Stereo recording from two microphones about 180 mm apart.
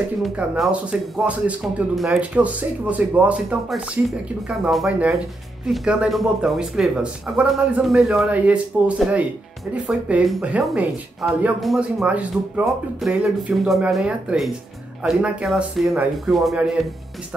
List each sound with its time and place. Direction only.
0.2 s speech: 5° right (ahead or behind)